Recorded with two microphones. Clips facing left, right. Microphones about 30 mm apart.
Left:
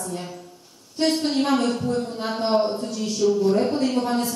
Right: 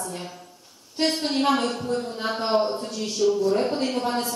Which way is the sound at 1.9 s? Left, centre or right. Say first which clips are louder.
Left 1 dB; centre.